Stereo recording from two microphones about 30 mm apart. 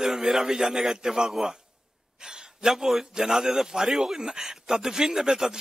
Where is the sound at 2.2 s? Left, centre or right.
Right.